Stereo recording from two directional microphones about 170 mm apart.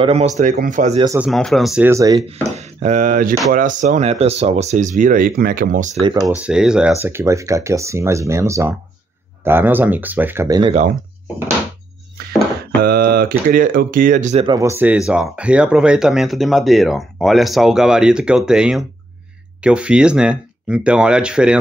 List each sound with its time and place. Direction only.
0.0 s speech: 35° right (ahead or behind)
0.4 s speech: 50° right (ahead or behind)
1.2 s speech: centre (ahead or behind)
1.8 s speech: 15° right (ahead or behind)
2.2 s speech: 40° right (ahead or behind)
6.0 s speech: 20° right (ahead or behind)
6.4 s speech: 5° right (ahead or behind)
10.6 s speech: 40° right (ahead or behind)
12.8 s speech: 65° right (ahead or behind); by 14.4 s 50° right (ahead or behind)
14.4 s speech: 20° right (ahead or behind); by 21.5 s 5° right (ahead or behind)